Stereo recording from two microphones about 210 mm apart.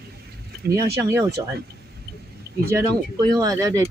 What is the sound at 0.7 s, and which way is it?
Speech, 15° right (ahead or behind).